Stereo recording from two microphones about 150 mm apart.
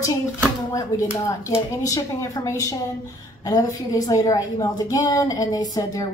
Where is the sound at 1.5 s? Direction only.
20° left (ahead or behind).